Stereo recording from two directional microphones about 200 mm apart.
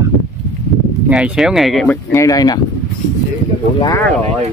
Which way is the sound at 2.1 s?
15° left (ahead or behind).